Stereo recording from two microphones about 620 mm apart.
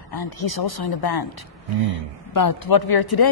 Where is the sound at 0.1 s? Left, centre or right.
Left.